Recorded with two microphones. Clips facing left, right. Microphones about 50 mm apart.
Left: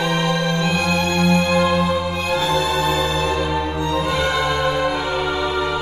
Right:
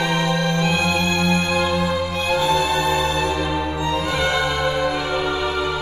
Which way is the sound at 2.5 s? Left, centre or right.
Right.